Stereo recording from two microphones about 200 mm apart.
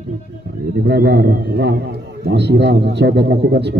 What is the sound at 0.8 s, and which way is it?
A man's voice, 60° right (ahead or behind).